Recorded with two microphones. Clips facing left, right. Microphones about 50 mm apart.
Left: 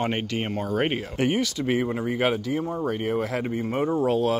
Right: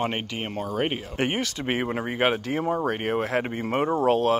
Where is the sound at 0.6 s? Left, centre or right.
Centre.